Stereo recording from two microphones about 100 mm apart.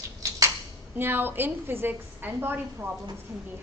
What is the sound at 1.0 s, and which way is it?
A woman's voice, 20° right (ahead or behind).